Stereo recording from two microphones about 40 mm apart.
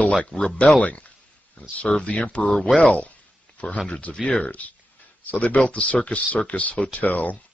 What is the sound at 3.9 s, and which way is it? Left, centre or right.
Speech, left.